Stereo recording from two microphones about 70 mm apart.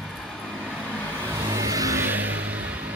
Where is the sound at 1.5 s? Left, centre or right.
Right.